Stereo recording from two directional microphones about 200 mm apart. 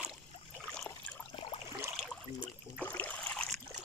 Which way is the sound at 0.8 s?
5° left (ahead or behind).